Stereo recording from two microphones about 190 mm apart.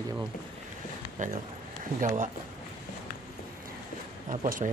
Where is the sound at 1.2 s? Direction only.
45° right (ahead or behind).